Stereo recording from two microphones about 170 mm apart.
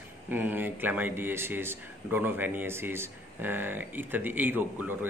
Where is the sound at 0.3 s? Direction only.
10° right (ahead or behind).